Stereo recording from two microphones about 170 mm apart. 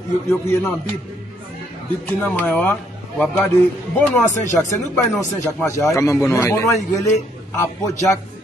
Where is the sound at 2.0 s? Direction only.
10° left (ahead or behind).